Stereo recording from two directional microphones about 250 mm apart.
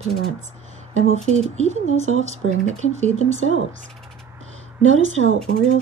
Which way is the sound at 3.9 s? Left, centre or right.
Centre.